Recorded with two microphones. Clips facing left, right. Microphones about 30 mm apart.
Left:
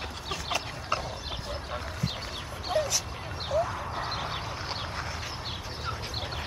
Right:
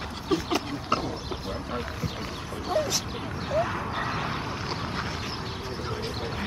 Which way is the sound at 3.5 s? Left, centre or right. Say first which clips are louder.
Right 1 dB; right.